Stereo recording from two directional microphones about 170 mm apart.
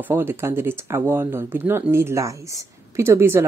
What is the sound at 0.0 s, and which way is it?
Speech, 15° right (ahead or behind).